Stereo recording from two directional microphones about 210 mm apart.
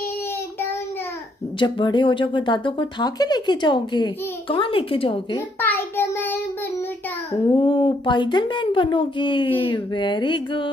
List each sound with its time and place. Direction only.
1.6 s speech: 20° left (ahead or behind)
5.6 s child singing: 10° left (ahead or behind)
7.5 s speech: 25° left (ahead or behind)